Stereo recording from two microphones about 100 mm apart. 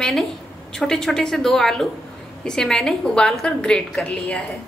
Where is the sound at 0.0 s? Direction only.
Centre (ahead or behind).